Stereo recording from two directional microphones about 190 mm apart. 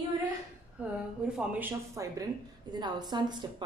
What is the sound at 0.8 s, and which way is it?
A woman's voice, 5° right (ahead or behind).